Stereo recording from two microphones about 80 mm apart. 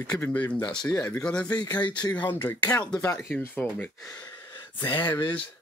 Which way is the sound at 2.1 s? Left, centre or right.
Left.